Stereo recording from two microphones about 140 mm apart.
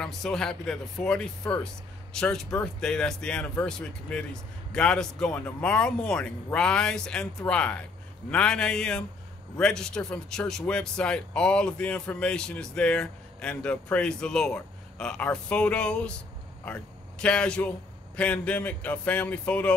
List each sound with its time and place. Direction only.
0.0 s speech: 5° left (ahead or behind)